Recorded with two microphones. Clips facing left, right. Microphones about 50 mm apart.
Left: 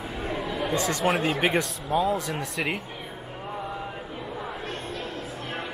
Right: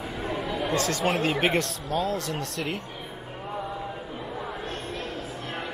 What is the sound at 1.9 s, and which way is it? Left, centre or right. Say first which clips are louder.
Speech: left 3 dB; centre.